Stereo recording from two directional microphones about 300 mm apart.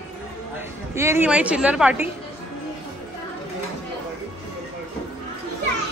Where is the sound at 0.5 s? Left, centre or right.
Centre.